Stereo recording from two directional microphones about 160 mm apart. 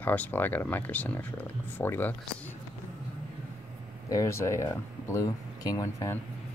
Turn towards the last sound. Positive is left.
turn(degrees=20)  # may be behind; listen again after turning